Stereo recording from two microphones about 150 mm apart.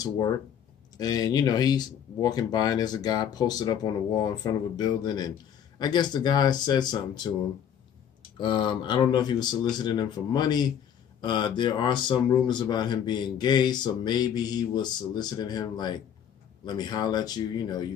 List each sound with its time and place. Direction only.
0.9 s speech: 25° left (ahead or behind)
8.4 s speech: 30° left (ahead or behind)